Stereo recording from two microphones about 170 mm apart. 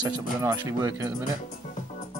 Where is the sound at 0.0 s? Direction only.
20° right (ahead or behind).